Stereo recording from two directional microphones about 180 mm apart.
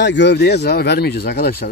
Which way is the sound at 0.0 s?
80° left.